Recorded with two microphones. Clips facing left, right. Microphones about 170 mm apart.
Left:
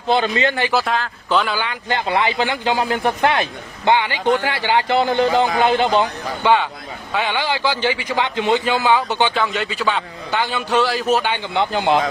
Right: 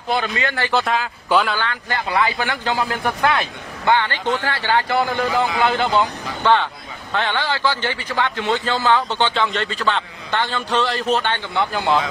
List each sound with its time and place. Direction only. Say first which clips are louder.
0.1 s a man's voice: left 4 dB; 25° left (ahead or behind)
0.7 s a man's voice: even; centre (ahead or behind)
1.6 s a man's voice: left 2 dB; 20° left (ahead or behind)
11.5 s a man's voice: left 2 dB; 20° left (ahead or behind)